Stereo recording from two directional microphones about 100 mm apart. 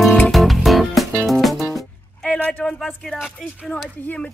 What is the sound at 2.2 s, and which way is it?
Speech, 10° left (ahead or behind).